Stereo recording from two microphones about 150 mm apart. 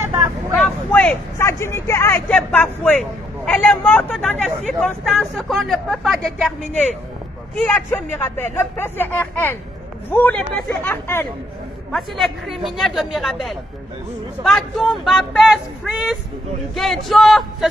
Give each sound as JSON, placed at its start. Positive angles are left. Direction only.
{"t": 0.0, "sound": "vehicle", "side_deg": -20}
{"t": 0.9, "sound": "speech", "side_deg": 15}
{"t": 7.5, "sound": "speech", "side_deg": 10}
{"t": 11.9, "sound": "speech", "side_deg": 0}